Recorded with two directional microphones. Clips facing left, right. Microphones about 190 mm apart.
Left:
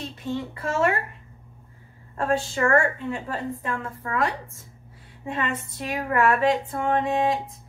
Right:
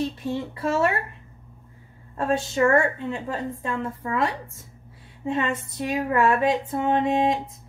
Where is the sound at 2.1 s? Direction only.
20° right (ahead or behind).